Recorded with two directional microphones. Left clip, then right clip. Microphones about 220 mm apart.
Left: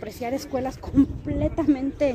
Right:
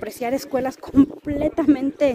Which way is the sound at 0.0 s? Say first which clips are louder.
Right 5 dB; 25° right (ahead or behind).